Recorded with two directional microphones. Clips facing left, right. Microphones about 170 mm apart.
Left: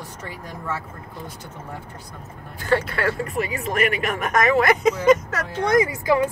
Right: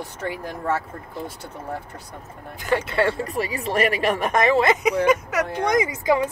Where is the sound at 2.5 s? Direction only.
15° right (ahead or behind).